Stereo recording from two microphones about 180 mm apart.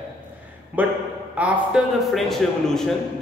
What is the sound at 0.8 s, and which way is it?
A man's voice, 10° right (ahead or behind).